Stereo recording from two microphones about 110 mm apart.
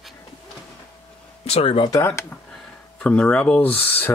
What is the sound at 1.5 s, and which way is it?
Speech, 60° left (ahead or behind).